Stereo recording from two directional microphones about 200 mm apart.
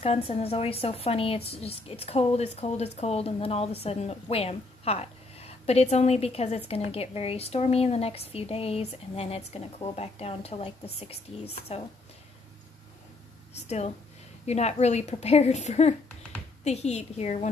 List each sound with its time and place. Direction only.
0.0 s a woman's voice: 30° left (ahead or behind)
13.7 s a woman's voice: 35° left (ahead or behind)